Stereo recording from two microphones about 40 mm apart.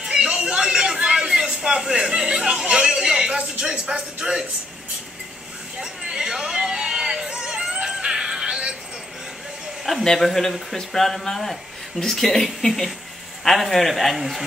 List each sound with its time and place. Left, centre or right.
0.1 s chatter: right
0.9 s speech: right
5.8 s a sound: centre
10.0 s a man's voice: centre